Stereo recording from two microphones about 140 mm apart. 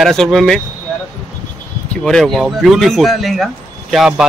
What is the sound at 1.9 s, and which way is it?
A man's voice, 5° left (ahead or behind).